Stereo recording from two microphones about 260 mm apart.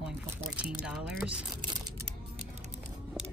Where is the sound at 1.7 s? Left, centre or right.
Centre.